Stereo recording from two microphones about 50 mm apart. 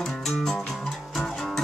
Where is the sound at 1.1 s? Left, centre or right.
Centre.